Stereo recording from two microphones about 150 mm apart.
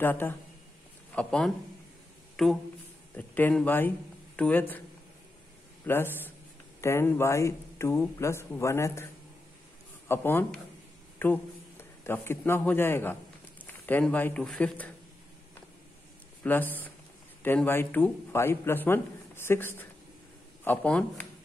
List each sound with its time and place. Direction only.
0.0 s a man's voice: 15° left (ahead or behind)
5.9 s a man's voice: 15° left (ahead or behind)
16.4 s a man's voice: 10° left (ahead or behind)